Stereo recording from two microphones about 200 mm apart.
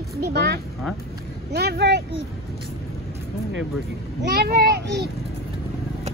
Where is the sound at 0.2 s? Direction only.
55° right (ahead or behind).